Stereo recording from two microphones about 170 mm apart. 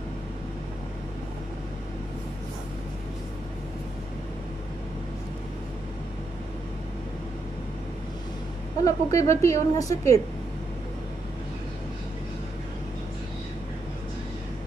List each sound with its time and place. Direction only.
8.8 s a woman's voice: 20° left (ahead or behind)